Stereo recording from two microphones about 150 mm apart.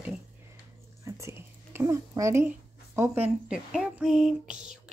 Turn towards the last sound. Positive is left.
turn(degrees=-5)  # may be behind; listen again after turning